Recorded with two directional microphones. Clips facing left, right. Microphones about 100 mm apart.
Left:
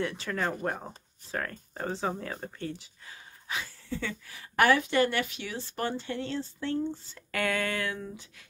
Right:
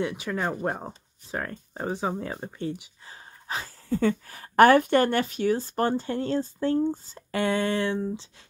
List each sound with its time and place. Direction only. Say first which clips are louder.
0.0 s speech: right 3 dB; 15° right (ahead or behind)
3.1 s speech: right 4 dB; 40° right (ahead or behind)
7.2 s speech: right 4 dB; 25° right (ahead or behind)